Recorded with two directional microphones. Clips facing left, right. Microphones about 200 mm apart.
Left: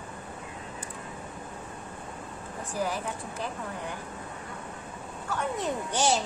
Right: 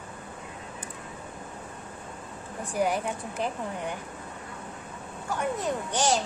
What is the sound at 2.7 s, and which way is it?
Speech, 20° right (ahead or behind).